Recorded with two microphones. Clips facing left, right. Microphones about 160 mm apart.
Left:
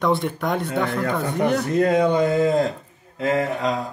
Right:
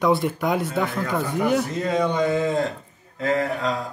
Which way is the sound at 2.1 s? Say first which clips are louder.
Left 3 dB; 45° left (ahead or behind).